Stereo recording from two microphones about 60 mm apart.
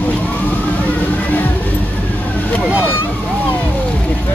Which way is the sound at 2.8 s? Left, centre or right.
Left.